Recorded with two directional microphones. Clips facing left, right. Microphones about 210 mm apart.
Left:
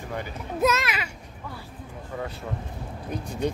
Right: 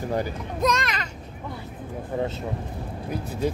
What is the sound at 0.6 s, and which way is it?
Speech, 5° left (ahead or behind).